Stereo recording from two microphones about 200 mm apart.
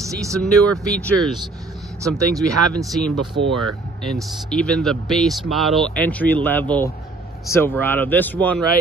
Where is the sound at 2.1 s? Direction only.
15° right (ahead or behind).